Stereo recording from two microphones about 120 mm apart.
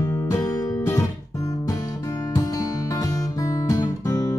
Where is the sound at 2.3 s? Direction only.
30° left (ahead or behind).